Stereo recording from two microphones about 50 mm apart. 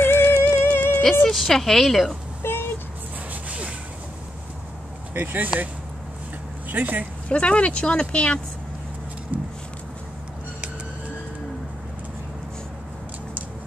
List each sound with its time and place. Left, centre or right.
0.0 s music: left
0.3 s music: left
1.3 s a woman's voice: centre
2.4 s vehicle: left
3.4 s a sound: right
5.1 s speech: right
6.7 s speech: right
7.2 s speech: left
9.3 s a sound: right